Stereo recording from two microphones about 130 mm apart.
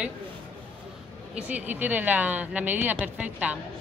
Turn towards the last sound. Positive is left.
turn(degrees=-10)  # may be behind; listen again after turning